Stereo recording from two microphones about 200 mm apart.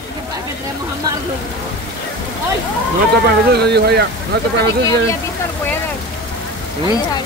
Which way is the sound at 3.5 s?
55° right (ahead or behind).